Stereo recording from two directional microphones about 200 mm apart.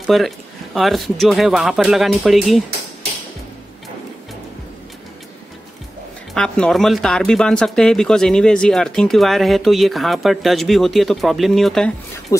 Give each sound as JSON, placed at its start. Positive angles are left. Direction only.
{"t": 0.0, "sound": "speech", "side_deg": 0}
{"t": 6.3, "sound": "speech", "side_deg": 5}
{"t": 12.3, "sound": "speech", "side_deg": 15}